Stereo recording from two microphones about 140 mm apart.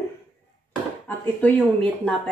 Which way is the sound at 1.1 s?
10° left (ahead or behind).